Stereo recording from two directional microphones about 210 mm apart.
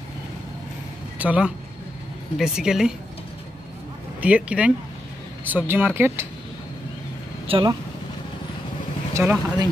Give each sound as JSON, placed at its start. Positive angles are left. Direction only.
{"t": 1.1, "sound": "speech", "side_deg": -5}
{"t": 4.2, "sound": "speech", "side_deg": -5}
{"t": 7.4, "sound": "speech", "side_deg": -25}
{"t": 9.1, "sound": "speech", "side_deg": -10}